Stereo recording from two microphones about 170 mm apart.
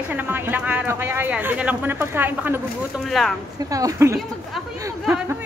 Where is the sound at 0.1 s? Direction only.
10° right (ahead or behind).